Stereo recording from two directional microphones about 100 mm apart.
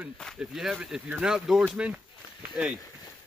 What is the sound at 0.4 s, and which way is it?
Speech, 10° right (ahead or behind).